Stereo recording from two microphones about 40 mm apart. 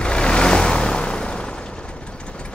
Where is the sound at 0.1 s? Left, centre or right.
Left.